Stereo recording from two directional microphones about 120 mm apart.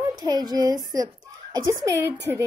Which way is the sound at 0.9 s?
30° right (ahead or behind).